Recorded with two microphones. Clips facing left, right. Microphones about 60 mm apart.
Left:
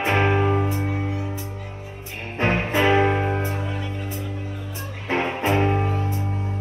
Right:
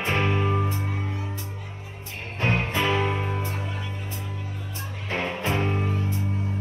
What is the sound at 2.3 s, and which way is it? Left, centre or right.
Music, left.